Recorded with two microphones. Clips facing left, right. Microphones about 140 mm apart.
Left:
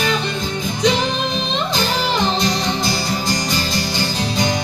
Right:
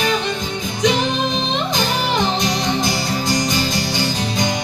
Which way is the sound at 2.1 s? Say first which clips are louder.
Even; 20° right (ahead or behind).